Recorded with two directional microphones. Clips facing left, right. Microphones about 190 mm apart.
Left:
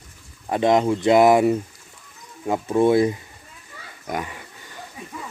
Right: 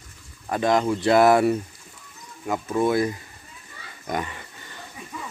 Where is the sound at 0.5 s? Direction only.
25° left (ahead or behind).